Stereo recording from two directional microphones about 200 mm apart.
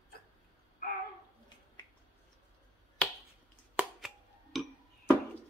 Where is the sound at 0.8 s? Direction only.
50° left (ahead or behind).